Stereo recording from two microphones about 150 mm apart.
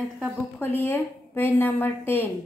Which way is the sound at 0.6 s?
15° left (ahead or behind).